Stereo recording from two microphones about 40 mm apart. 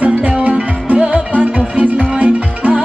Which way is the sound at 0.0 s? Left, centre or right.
Right.